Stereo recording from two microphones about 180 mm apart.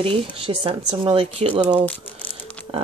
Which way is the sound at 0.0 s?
30° right (ahead or behind).